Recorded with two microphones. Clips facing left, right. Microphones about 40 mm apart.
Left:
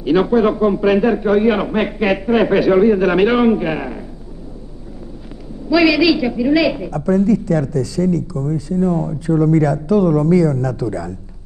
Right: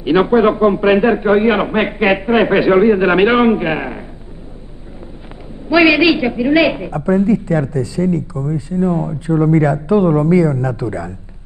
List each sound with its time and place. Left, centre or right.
0.0 s a woman's voice: right
5.7 s a woman's voice: right